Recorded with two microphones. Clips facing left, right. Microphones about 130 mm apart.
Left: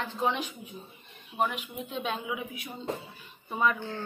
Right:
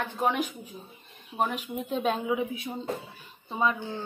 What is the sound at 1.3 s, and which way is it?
A woman's voice, 35° right (ahead or behind).